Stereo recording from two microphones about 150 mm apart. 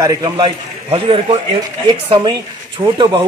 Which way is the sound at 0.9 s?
35° right (ahead or behind).